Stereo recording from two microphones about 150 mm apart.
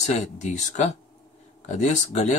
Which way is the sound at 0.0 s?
55° left (ahead or behind).